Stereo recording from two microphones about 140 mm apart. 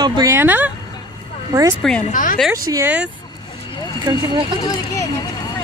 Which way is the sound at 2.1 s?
80° left.